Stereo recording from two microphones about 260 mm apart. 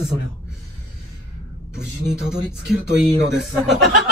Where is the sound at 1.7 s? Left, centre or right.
Centre.